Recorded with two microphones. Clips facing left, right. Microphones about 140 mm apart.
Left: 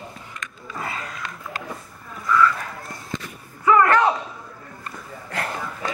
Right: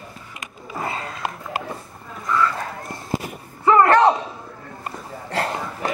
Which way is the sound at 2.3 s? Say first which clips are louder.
Left 2 dB; 30° right (ahead or behind).